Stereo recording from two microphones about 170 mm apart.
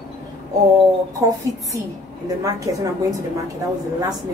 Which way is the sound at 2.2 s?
20° right (ahead or behind).